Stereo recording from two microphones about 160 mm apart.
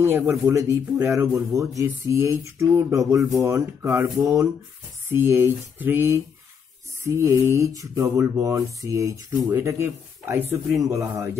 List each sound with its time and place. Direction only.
0.5 s mantra: 20° right (ahead or behind)
5.1 s a sound: 15° right (ahead or behind)
7.1 s mantra: 15° right (ahead or behind)